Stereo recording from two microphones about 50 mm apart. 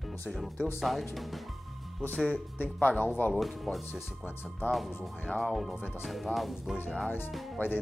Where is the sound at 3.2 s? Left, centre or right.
Left.